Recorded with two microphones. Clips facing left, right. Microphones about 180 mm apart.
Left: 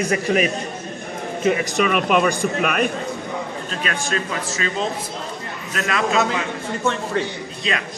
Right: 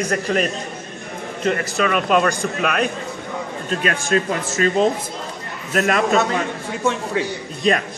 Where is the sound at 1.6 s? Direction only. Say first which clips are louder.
Left 1 dB; 10° left (ahead or behind).